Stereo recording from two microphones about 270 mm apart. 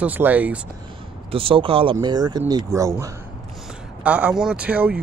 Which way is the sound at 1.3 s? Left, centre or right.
Centre.